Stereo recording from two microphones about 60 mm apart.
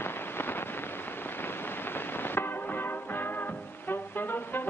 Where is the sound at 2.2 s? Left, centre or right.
Left.